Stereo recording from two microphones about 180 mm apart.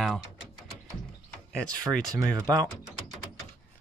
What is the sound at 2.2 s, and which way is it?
Speech, 20° right (ahead or behind).